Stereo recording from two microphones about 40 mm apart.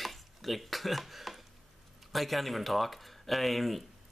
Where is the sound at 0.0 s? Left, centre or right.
Centre.